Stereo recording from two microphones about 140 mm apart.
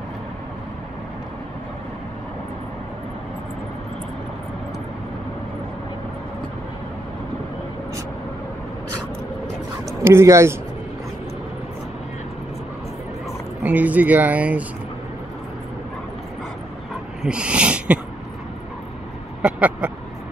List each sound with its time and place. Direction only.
9.8 s speech: 20° right (ahead or behind)
13.6 s speech: 10° right (ahead or behind)
16.9 s dog: 5° right (ahead or behind)
19.4 s speech: 10° right (ahead or behind)